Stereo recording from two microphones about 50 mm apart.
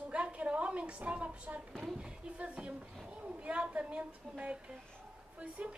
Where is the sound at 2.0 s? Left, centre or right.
Right.